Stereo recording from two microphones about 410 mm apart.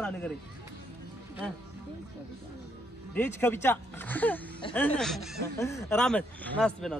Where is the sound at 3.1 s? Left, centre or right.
Centre.